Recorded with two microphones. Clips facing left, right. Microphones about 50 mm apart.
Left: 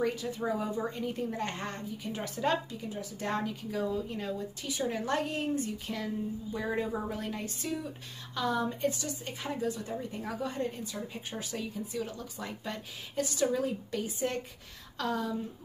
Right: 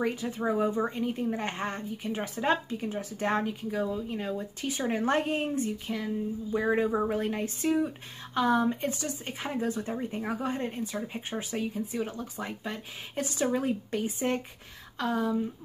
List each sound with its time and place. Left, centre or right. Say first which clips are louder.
0.0 s a woman's voice: right 2 dB; right
2.8 s speech: right 5 dB; right
3.7 s speech: even; centre
4.3 s speech: right 3 dB; right
5.7 s speech: right 3 dB; centre
6.5 s a woman's voice: right 7 dB; right
15.0 s a woman's voice: right 4 dB; centre